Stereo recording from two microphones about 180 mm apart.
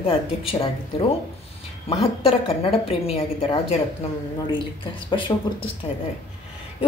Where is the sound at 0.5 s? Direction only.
30° left (ahead or behind).